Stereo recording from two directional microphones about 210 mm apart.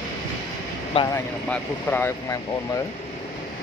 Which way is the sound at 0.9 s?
15° left (ahead or behind).